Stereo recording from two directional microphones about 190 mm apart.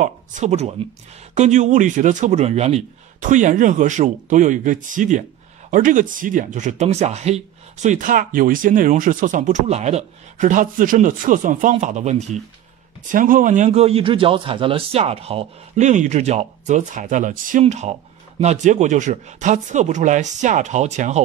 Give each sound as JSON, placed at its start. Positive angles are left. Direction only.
{"t": 0.0, "sound": "speech", "side_deg": -40}